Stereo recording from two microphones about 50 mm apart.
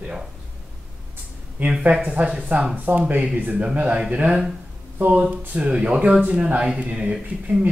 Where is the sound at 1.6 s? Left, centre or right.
Right.